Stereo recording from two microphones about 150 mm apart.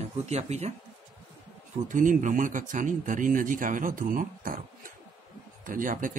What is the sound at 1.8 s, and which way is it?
Speech, 60° right (ahead or behind).